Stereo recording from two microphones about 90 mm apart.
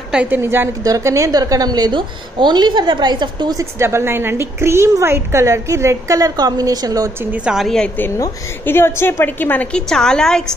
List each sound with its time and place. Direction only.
0.1 s a woman's voice: 15° right (ahead or behind)
0.4 s a woman's voice: 25° right (ahead or behind)
0.8 s a woman's voice: 35° right (ahead or behind); by 3.5 s 55° right (ahead or behind)
3.5 s a woman's voice: 30° right (ahead or behind)
7.5 s a woman's voice: 5° left (ahead or behind)
8.6 s a woman's voice: 25° left (ahead or behind); by 10.5 s 10° left (ahead or behind)